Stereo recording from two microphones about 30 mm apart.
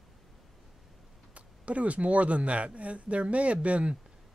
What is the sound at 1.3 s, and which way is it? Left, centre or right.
Speech, right.